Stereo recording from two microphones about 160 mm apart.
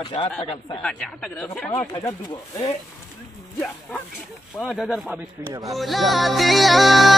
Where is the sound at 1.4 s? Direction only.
10° left (ahead or behind).